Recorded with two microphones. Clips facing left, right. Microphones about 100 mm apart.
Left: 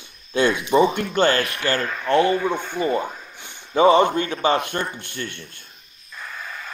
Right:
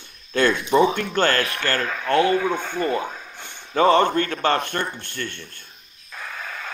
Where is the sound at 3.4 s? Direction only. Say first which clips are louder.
Left 2 dB; 15° left (ahead or behind).